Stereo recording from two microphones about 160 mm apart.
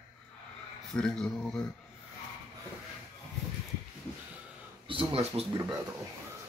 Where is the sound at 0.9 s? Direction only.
5° left (ahead or behind).